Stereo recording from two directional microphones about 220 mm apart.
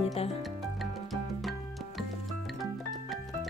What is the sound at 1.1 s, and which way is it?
Music, centre (ahead or behind).